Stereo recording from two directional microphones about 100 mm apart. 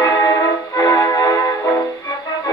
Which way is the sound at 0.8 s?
35° left (ahead or behind).